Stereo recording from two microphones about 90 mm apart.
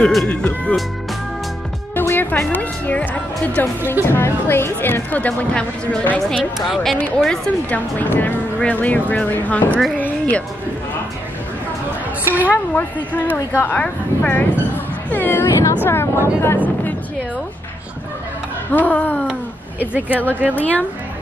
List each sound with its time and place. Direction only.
0.0 s speech: 5° left (ahead or behind)
0.3 s speech: 15° left (ahead or behind)
2.0 s music: 20° left (ahead or behind)
3.6 s speech: 20° left (ahead or behind)
8.0 s speech: 20° left (ahead or behind)
9.9 s music: 20° left (ahead or behind)
12.3 s speech: 20° right (ahead or behind)
12.7 s speech: 20° left (ahead or behind)
18.7 s speech: 20° left (ahead or behind)
19.8 s speech: 20° right (ahead or behind)
20.5 s speech: 20° left (ahead or behind)